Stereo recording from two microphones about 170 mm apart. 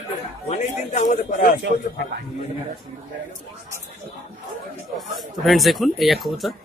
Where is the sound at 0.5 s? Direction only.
45° left (ahead or behind).